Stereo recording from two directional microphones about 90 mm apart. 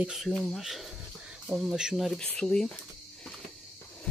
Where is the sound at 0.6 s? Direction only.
Centre (ahead or behind).